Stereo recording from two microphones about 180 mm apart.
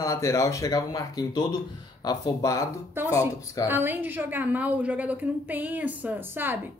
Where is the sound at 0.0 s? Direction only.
20° left (ahead or behind).